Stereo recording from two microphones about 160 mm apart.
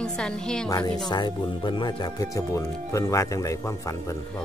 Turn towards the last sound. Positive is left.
turn(degrees=20)  # may be behind; listen again after turning